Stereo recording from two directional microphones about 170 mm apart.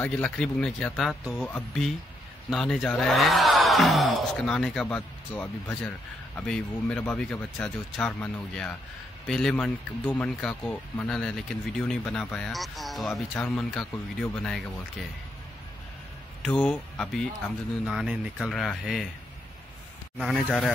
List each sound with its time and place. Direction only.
0.0 s speech: 5° left (ahead or behind)
16.4 s speech: 5° left (ahead or behind)
20.2 s speech: centre (ahead or behind)